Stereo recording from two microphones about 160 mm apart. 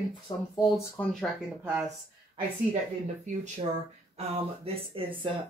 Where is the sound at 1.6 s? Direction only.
15° right (ahead or behind).